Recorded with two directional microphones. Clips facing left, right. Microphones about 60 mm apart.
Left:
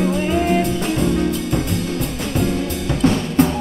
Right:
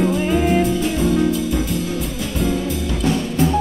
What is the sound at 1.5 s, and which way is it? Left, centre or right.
Music, left.